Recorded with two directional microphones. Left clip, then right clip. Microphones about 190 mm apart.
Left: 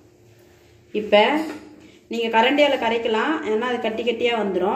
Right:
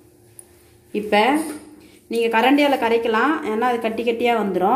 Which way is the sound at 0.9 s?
50° right (ahead or behind).